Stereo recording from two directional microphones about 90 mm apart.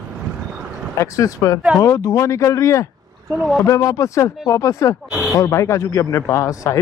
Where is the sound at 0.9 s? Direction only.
35° left (ahead or behind).